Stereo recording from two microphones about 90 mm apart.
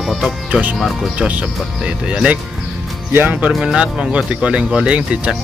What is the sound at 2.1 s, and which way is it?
Speech, 15° right (ahead or behind).